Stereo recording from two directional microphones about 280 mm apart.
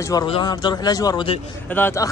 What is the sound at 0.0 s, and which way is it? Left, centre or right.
Speech, centre.